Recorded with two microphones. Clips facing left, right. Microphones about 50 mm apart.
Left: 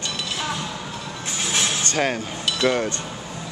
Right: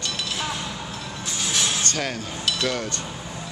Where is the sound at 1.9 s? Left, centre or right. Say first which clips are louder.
Left 5 dB; left.